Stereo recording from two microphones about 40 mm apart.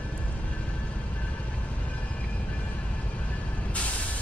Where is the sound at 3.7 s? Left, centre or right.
Left.